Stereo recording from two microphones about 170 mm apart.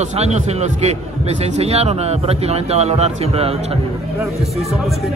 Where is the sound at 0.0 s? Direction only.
40° right (ahead or behind).